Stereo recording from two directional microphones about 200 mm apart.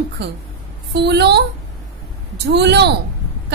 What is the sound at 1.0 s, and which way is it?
Speech, 55° right (ahead or behind).